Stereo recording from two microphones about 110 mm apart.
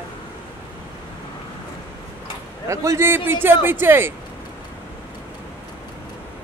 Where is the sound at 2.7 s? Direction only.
25° right (ahead or behind).